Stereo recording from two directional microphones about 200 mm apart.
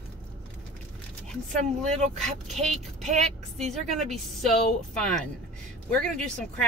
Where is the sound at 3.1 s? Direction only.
35° right (ahead or behind).